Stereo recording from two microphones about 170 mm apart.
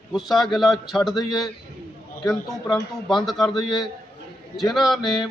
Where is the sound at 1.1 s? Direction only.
25° left (ahead or behind).